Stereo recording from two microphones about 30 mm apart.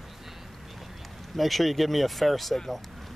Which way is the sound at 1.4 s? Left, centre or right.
Centre.